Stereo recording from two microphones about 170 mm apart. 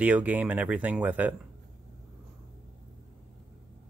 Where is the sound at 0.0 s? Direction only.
10° right (ahead or behind).